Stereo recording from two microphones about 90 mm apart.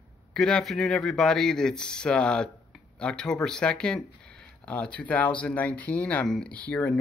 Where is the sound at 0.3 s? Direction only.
10° left (ahead or behind).